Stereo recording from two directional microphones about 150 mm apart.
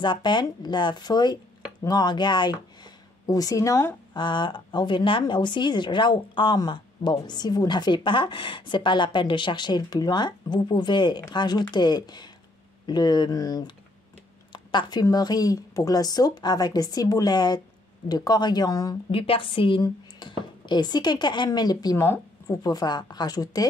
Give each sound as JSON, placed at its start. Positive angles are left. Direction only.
{"t": 0.0, "sound": "a woman's voice", "side_deg": 30}
{"t": 19.1, "sound": "speech", "side_deg": 35}
{"t": 22.0, "sound": "speech", "side_deg": 15}
{"t": 22.6, "sound": "a woman's voice", "side_deg": 25}